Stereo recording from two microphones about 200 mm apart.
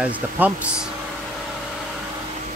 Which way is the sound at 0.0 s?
5° right (ahead or behind).